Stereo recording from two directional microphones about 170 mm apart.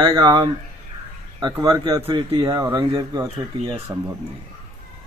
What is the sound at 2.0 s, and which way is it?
A man's voice, 35° right (ahead or behind).